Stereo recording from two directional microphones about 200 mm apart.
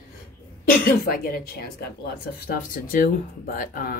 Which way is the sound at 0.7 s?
45° left (ahead or behind).